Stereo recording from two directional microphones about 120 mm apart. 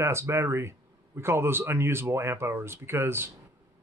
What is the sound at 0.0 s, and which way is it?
Speech, 20° right (ahead or behind).